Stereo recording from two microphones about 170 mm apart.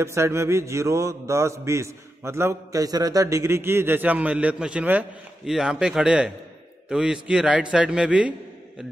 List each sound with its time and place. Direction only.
0.0 s mantra: 15° right (ahead or behind)
6.9 s a man's voice: 5° right (ahead or behind)